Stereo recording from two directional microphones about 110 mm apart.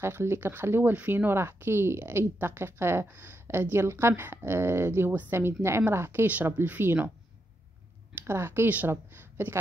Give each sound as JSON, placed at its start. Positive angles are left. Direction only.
{"t": 0.0, "sound": "speech", "side_deg": -25}
{"t": 8.3, "sound": "speech", "side_deg": -20}